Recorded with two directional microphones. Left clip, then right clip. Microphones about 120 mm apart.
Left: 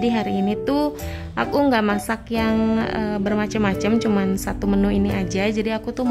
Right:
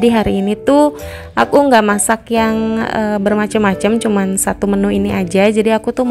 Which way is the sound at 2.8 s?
30° right (ahead or behind).